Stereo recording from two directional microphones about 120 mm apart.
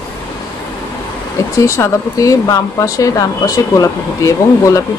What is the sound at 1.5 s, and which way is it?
Speech, 25° left (ahead or behind).